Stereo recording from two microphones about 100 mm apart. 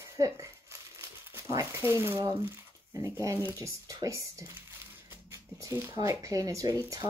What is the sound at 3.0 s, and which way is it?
Speech, 35° right (ahead or behind).